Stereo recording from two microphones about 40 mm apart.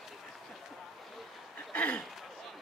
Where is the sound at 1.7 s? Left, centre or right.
Left.